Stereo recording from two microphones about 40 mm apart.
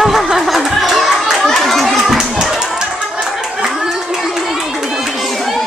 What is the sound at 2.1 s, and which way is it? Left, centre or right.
Music, centre.